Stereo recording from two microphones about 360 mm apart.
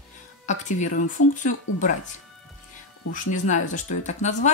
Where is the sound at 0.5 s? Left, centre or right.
Left.